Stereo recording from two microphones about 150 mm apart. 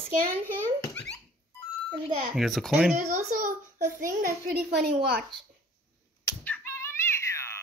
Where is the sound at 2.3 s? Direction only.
Centre (ahead or behind).